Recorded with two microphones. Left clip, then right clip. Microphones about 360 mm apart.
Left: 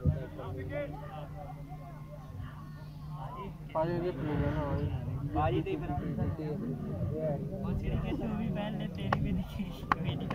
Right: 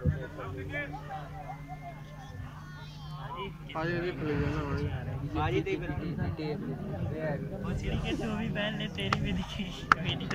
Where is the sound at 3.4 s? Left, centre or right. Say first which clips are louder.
Left 3 dB; left.